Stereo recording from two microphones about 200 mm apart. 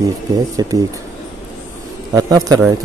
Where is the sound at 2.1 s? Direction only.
15° right (ahead or behind).